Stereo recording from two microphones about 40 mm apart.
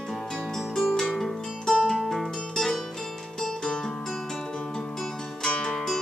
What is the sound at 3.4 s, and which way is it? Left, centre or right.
Music, centre.